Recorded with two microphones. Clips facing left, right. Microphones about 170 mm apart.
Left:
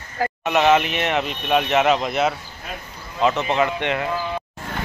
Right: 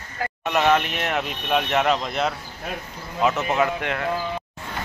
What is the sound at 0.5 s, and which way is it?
Speech, 5° left (ahead or behind).